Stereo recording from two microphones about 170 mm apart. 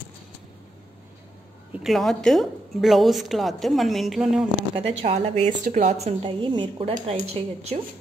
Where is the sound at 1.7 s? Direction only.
Centre (ahead or behind).